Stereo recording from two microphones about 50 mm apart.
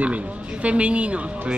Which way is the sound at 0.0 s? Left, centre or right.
Right.